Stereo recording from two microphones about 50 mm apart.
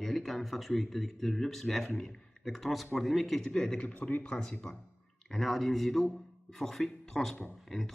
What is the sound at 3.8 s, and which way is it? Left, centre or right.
Speech, left.